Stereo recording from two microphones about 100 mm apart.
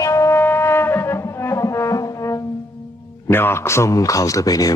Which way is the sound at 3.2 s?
25° left (ahead or behind).